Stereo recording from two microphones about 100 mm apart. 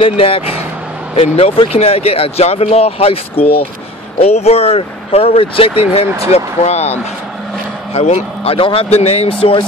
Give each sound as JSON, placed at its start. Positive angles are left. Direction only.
{"t": 0.0, "sound": "speech", "side_deg": 70}
{"t": 4.2, "sound": "speech", "side_deg": 90}
{"t": 6.3, "sound": "speech", "side_deg": 90}